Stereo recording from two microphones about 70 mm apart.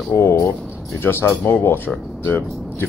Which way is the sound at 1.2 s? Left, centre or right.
Left.